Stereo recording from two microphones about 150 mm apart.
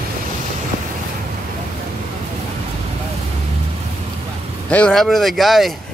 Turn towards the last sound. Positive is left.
turn(degrees=0)  # may be behind; listen again after turning